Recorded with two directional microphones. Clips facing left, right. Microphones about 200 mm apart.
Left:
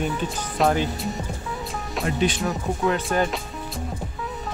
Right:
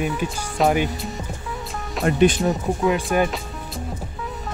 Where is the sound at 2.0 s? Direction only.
55° right (ahead or behind).